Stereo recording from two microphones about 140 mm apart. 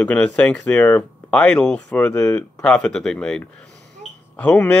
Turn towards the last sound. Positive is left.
turn(degrees=10)  # may be behind; listen again after turning